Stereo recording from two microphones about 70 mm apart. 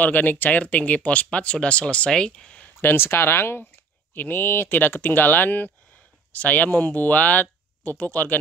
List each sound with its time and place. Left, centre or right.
0.0 s speech: left
2.6 s speech: left